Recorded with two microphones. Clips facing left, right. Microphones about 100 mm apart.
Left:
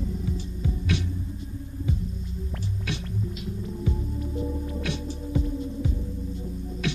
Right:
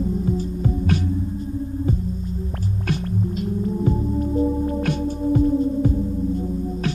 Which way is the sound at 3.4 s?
45° right (ahead or behind).